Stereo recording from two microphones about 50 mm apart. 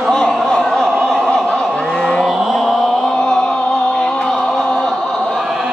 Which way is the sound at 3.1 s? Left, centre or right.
Centre.